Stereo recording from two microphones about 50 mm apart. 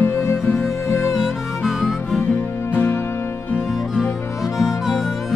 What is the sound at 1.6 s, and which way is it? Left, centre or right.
Harmonica, centre.